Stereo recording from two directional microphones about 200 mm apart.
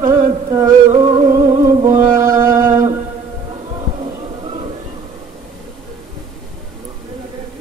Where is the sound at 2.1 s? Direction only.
40° right (ahead or behind).